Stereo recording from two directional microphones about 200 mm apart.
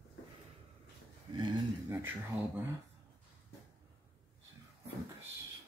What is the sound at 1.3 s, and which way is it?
Speech, 25° right (ahead or behind).